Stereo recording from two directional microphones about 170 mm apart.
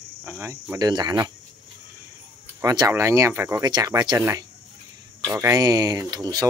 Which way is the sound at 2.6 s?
25° right (ahead or behind).